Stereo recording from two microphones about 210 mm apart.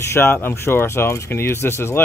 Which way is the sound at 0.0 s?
10° left (ahead or behind).